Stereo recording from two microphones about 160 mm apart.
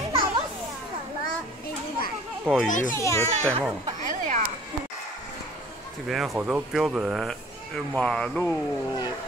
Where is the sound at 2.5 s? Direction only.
5° left (ahead or behind).